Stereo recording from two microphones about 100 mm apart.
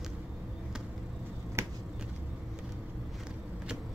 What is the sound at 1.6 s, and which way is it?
Finger snapping, 25° right (ahead or behind).